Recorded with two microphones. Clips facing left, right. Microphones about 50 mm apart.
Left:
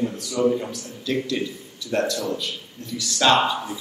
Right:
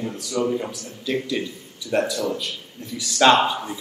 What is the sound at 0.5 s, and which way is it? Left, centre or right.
Speech, centre.